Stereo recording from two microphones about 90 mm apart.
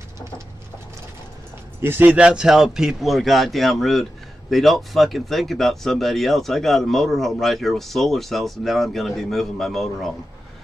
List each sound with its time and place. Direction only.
1.8 s speech: 25° right (ahead or behind)
2.1 s a man's voice: 10° right (ahead or behind)